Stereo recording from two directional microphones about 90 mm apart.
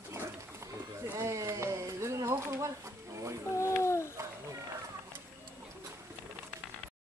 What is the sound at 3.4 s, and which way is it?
Babbling, 30° left (ahead or behind).